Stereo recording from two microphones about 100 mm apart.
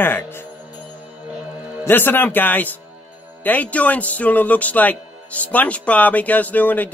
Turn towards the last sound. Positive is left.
turn(degrees=15)  # may be behind; listen again after turning